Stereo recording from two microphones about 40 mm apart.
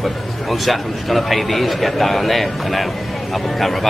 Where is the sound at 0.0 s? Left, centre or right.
Centre.